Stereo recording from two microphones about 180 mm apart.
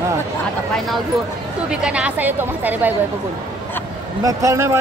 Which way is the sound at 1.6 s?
5° right (ahead or behind).